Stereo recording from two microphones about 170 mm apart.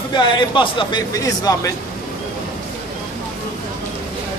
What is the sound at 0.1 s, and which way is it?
Speech, 30° left (ahead or behind).